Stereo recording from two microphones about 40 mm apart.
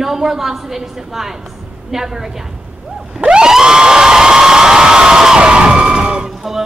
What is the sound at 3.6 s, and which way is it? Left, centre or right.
Crowd, centre.